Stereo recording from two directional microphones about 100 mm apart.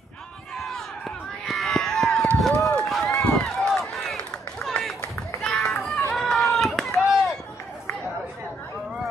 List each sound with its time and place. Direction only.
0.6 s a sound: centre (ahead or behind)
2.3 s run: centre (ahead or behind)
5.4 s children playing: 5° left (ahead or behind)
6.1 s run: centre (ahead or behind)